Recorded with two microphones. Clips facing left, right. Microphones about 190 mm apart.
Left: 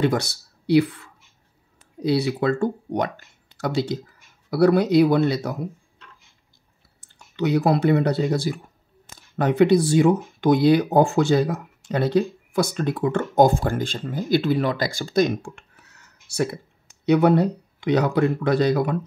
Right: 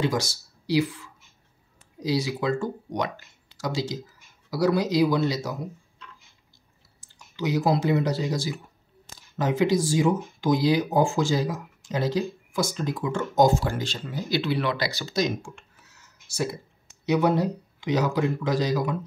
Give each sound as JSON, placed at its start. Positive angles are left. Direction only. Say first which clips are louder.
{"t": 0.0, "sound": "speech", "louder": "left 4 dB", "side_deg": 60}